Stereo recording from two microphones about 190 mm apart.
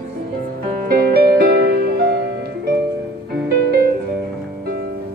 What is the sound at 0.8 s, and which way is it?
Music, 55° right (ahead or behind).